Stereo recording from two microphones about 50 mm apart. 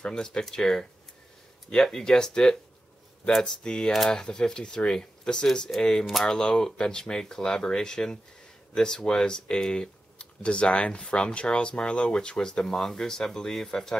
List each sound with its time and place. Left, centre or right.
0.0 s speech: centre